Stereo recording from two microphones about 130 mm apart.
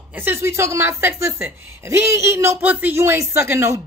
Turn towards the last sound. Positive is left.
turn(degrees=-20)  # may be behind; listen again after turning